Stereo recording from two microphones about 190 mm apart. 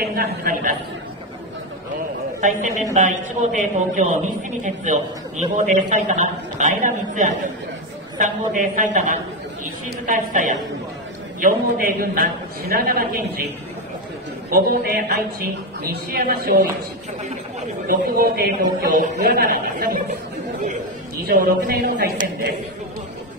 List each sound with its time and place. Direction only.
0.0 s a man's voice: 50° right (ahead or behind)
2.4 s a man's voice: 40° right (ahead or behind)
14.5 s a man's voice: 50° right (ahead or behind)
17.8 s a man's voice: 50° right (ahead or behind)
21.3 s a man's voice: 50° right (ahead or behind)